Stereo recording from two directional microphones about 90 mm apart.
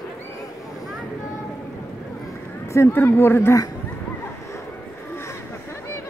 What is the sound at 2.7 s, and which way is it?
Speech, 25° left (ahead or behind).